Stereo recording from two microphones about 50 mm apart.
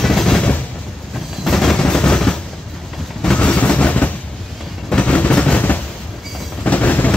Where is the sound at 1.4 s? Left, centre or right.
Centre.